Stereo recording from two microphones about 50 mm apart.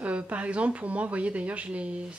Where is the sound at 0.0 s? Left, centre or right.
Right.